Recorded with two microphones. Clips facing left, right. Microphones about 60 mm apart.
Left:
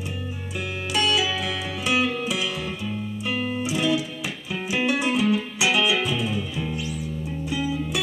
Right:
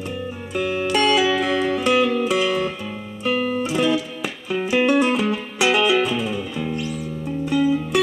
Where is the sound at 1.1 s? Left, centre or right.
Right.